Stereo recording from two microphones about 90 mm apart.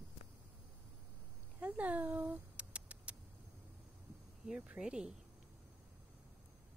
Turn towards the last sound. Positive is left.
turn(degrees=-10)  # may be behind; listen again after turning